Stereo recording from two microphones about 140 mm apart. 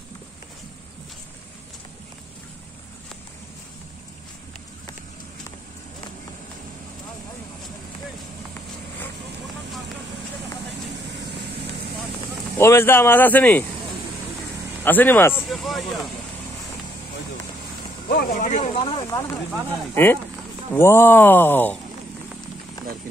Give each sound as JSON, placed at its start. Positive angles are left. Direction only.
{"t": 12.5, "sound": "speech", "side_deg": 20}
{"t": 14.8, "sound": "speech", "side_deg": 15}
{"t": 15.4, "sound": "speech", "side_deg": 0}
{"t": 18.0, "sound": "speech", "side_deg": 85}
{"t": 18.8, "sound": "speech", "side_deg": 45}
{"t": 19.0, "sound": "speech", "side_deg": 20}